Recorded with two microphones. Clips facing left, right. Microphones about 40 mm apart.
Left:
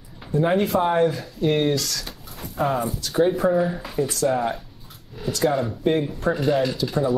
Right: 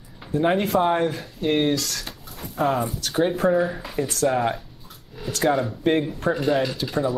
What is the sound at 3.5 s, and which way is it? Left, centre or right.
Speech, centre.